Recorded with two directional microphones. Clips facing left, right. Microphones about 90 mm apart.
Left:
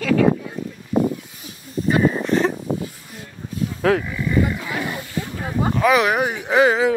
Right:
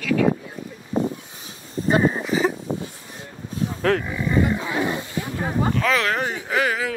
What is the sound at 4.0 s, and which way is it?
Wild animals, 20° right (ahead or behind).